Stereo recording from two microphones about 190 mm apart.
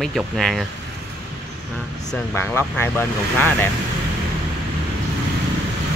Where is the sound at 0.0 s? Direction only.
Centre (ahead or behind).